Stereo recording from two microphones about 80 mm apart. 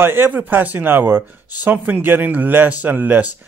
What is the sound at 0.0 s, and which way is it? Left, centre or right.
Speech, right.